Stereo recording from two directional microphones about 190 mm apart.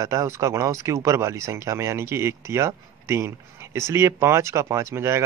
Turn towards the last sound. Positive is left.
turn(degrees=-15)  # may be behind; listen again after turning